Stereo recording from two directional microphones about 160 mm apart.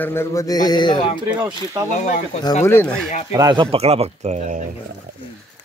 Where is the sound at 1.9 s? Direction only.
50° left (ahead or behind).